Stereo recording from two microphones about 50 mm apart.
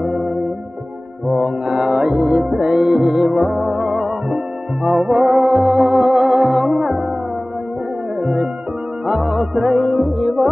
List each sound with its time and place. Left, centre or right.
0.0 s music: centre
1.2 s mantra: centre
2.2 s music: centre
8.2 s music: centre
9.0 s music: centre